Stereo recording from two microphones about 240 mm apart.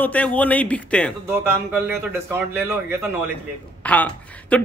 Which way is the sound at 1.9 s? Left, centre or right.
Centre.